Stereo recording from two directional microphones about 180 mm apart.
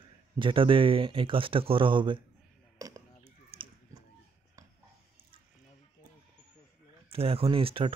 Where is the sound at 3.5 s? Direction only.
30° right (ahead or behind).